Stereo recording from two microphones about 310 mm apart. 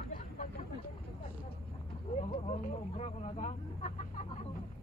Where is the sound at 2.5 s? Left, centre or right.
Left.